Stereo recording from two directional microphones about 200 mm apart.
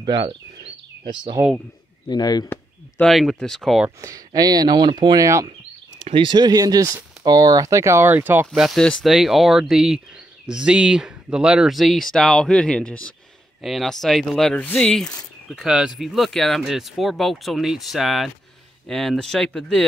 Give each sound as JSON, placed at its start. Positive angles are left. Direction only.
{"t": 0.0, "sound": "speech", "side_deg": -25}
{"t": 2.0, "sound": "speech", "side_deg": 20}
{"t": 2.5, "sound": "speech", "side_deg": 5}
{"t": 4.0, "sound": "speech", "side_deg": -15}
{"t": 8.5, "sound": "speech", "side_deg": 0}